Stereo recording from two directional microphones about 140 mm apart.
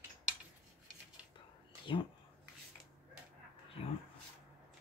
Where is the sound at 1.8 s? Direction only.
35° left (ahead or behind).